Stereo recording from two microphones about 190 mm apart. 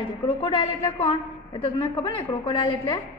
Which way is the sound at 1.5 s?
30° left (ahead or behind).